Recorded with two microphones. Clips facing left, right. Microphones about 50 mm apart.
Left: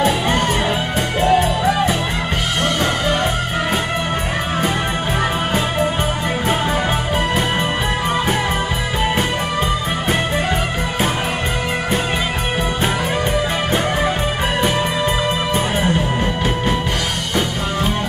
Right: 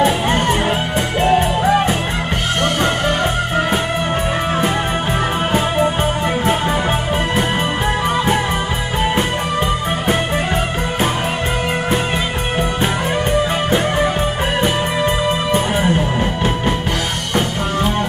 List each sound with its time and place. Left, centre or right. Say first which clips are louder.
0.0 s music: right 1 dB; right
14.6 s music: right 1 dB; right